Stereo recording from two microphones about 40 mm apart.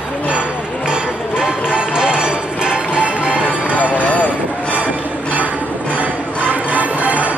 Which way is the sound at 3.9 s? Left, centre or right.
Left.